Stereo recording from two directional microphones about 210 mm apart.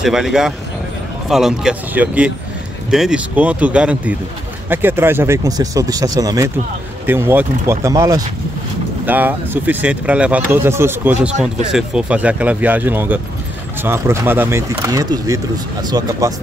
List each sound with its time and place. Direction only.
0.0 s speech: centre (ahead or behind); by 16.3 s 15° right (ahead or behind)